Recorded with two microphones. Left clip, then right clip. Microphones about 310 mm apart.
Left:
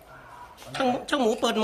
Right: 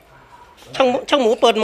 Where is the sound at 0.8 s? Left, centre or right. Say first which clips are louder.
Right 9 dB; centre.